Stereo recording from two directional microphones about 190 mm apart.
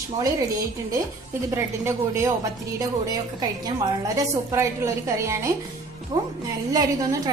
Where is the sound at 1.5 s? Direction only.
15° right (ahead or behind).